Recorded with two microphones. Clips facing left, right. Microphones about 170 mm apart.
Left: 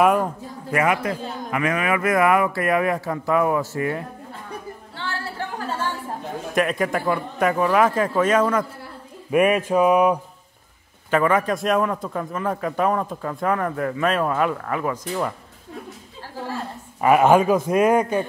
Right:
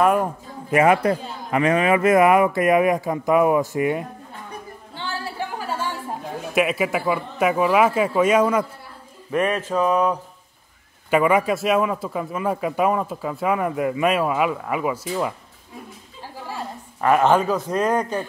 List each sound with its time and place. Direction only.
0.0 s speech: centre (ahead or behind)
0.7 s a man's voice: 25° right (ahead or behind)
4.9 s a sound: 15° right (ahead or behind)
6.5 s a man's voice: 5° right (ahead or behind)
9.3 s a man's voice: 10° left (ahead or behind)
11.1 s a man's voice: 10° right (ahead or behind)
17.0 s a man's voice: 10° left (ahead or behind)